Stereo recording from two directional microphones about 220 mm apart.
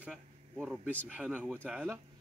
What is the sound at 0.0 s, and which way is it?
A man's voice, 5° right (ahead or behind).